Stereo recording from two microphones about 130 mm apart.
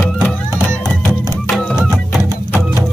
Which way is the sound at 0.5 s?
20° right (ahead or behind).